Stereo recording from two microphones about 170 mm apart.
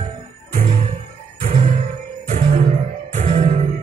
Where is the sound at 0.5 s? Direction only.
55° right (ahead or behind).